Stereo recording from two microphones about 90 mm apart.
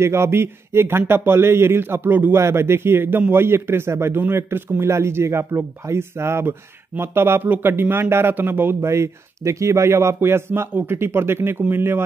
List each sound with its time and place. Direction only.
0.0 s a man's voice: 30° right (ahead or behind)